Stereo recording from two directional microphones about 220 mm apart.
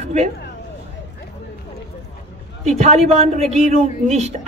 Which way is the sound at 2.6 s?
30° right (ahead or behind).